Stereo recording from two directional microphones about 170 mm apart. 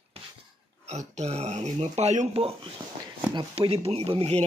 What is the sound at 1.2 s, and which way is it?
Speech, 40° right (ahead or behind).